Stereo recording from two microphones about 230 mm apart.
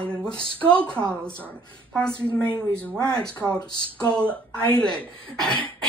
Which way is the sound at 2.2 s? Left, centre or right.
Centre.